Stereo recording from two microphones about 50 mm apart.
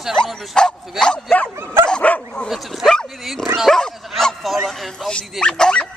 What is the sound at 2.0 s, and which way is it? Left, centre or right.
Dog, left.